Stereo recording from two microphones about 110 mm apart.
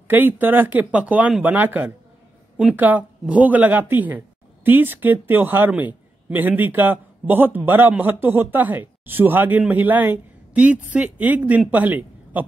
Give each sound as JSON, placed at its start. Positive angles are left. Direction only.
{"t": 0.1, "sound": "speech", "side_deg": -15}